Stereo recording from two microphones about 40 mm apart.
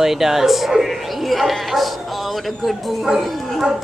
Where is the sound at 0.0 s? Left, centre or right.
Centre.